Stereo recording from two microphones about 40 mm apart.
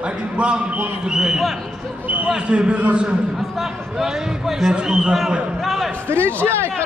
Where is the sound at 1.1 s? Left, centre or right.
Centre.